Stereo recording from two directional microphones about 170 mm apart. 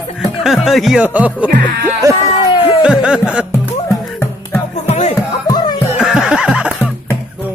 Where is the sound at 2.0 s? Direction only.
20° right (ahead or behind).